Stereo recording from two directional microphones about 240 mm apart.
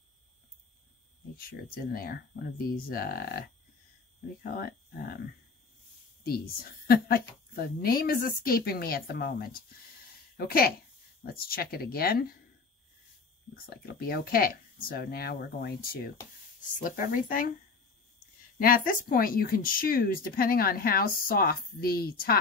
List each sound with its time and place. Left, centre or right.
1.3 s speech: left
6.2 s speech: left
13.7 s speech: left
18.6 s speech: left